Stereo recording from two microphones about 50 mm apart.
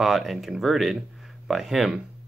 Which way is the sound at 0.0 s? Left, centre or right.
Centre.